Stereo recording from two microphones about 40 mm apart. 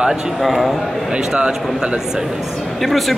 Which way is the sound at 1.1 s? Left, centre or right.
Right.